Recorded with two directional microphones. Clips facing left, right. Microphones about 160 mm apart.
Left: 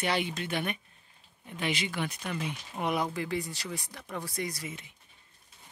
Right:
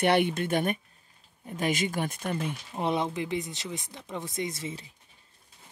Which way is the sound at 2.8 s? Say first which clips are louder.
Right 2 dB; 25° right (ahead or behind).